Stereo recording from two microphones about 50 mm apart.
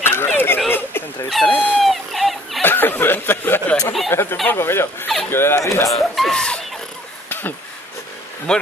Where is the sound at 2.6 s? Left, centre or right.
Left.